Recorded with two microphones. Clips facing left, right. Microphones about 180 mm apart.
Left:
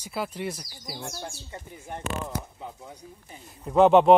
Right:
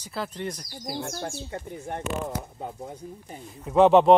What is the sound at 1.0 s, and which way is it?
Speech, 55° right (ahead or behind).